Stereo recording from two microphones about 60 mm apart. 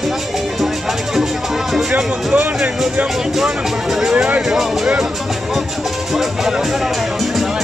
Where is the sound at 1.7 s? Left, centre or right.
Centre.